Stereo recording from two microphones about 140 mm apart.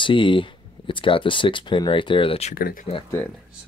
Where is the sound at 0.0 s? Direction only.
35° left (ahead or behind).